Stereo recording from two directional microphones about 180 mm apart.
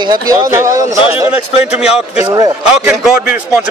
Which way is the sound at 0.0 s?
20° right (ahead or behind).